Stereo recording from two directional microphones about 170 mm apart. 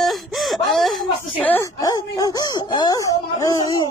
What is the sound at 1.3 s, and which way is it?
Speech, 10° left (ahead or behind).